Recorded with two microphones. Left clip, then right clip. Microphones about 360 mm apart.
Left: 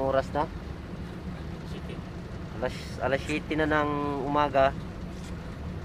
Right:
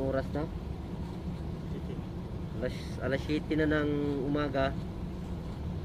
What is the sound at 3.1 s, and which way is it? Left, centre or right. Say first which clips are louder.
Speech: left 1 dB; centre.